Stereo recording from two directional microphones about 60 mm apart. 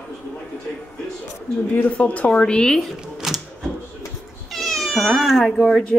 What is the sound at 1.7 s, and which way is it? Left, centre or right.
Speech, left.